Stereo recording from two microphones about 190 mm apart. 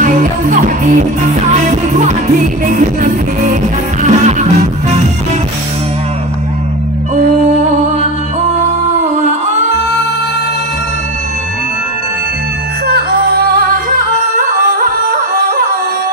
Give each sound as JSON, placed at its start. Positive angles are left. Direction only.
{"t": 0.0, "sound": "music", "side_deg": -45}
{"t": 2.6, "sound": "music", "side_deg": -40}
{"t": 13.8, "sound": "music", "side_deg": -45}